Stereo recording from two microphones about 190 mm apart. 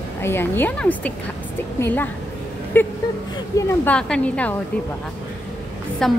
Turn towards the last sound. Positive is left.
turn(degrees=0)  # may be behind; listen again after turning